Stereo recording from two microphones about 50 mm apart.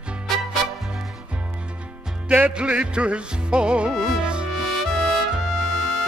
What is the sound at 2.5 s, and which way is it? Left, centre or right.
Music, centre.